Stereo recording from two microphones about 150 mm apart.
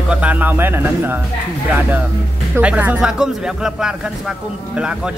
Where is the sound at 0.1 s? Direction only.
10° right (ahead or behind).